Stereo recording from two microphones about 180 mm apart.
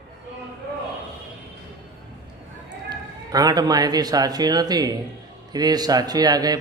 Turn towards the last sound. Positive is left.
turn(degrees=-20)  # may be behind; listen again after turning